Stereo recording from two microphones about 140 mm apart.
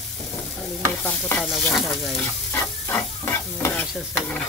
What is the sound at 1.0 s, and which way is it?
Stir, 10° left (ahead or behind).